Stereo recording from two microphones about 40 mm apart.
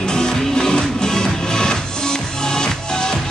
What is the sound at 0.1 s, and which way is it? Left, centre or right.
Music, centre.